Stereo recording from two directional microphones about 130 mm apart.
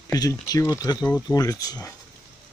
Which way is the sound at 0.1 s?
30° left (ahead or behind).